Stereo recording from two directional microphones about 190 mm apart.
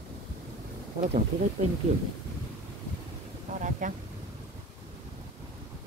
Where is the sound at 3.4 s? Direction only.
40° right (ahead or behind).